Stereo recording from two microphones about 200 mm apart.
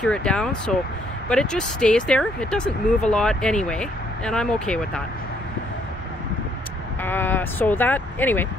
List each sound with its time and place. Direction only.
0.0 s speech: 5° left (ahead or behind)
7.0 s speech: 10° left (ahead or behind)